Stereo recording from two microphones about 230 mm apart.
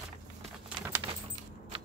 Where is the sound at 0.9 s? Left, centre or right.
Centre.